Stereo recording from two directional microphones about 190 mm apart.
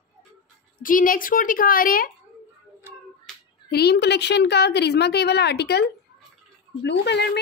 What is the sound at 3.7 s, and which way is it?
A woman's voice, 60° left (ahead or behind).